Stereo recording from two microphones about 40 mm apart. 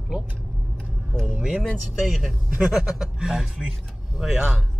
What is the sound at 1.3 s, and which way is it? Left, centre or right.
Speech, right.